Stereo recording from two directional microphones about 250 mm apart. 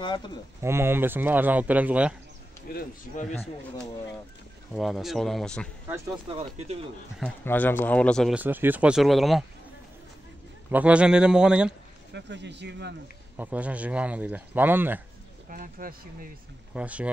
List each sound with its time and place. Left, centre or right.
0.0 s speech: centre
0.6 s speech: centre
2.7 s a man's voice: left
4.7 s speech: centre
6.3 s speech: right
7.2 s speech: centre
10.7 s speech: centre
12.1 s speech: right
13.4 s speech: centre
15.5 s speech: right
16.7 s speech: centre